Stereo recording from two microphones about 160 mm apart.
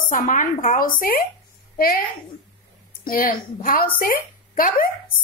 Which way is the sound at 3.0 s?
60° left (ahead or behind).